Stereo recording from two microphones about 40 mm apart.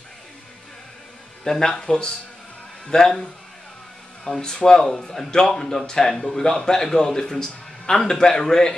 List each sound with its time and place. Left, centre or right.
1.4 s a man's voice: centre
4.2 s speech: centre